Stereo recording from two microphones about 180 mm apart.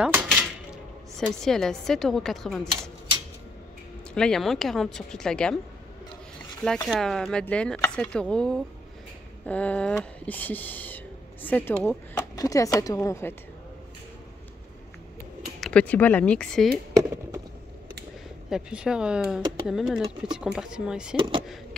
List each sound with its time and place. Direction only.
0.0 s a sound: 5° right (ahead or behind)
1.1 s speech: centre (ahead or behind)
4.1 s speech: 5° left (ahead or behind)
6.9 s speech: centre (ahead or behind)
15.6 s speech: 5° left (ahead or behind)
18.5 s speech: 5° right (ahead or behind)
21.2 s speech: 30° right (ahead or behind)